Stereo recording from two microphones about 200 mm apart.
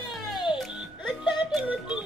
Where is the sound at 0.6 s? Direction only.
5° right (ahead or behind).